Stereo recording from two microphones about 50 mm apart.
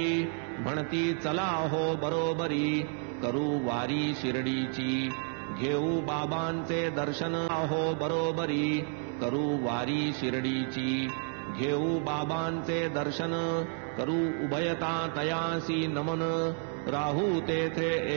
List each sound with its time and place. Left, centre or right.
0.0 s mantra: centre
5.7 s mantra: centre
11.7 s mantra: centre